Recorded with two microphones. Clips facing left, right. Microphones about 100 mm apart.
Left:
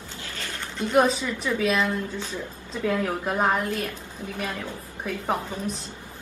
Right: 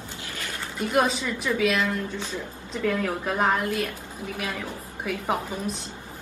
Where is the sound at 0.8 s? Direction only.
10° right (ahead or behind).